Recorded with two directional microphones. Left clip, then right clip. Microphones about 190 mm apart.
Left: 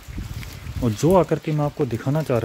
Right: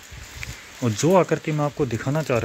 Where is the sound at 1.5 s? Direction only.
5° right (ahead or behind).